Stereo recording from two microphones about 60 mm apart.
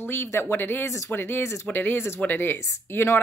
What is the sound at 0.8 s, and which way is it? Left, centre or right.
Speech, left.